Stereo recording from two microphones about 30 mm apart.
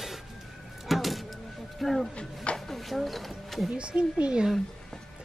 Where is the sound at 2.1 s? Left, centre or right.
Left.